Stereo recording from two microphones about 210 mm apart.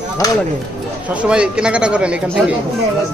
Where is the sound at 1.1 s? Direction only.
5° right (ahead or behind).